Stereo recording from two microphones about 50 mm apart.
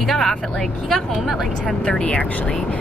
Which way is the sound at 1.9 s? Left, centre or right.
Left.